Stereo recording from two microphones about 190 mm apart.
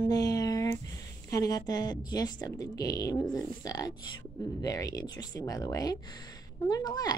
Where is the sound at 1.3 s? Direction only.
20° left (ahead or behind).